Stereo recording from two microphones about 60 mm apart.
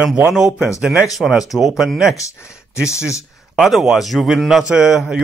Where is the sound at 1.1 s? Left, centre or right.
Centre.